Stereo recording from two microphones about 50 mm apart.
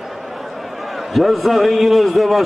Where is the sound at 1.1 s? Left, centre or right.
Centre.